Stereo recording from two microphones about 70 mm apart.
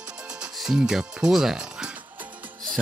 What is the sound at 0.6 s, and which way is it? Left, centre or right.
Speech, centre.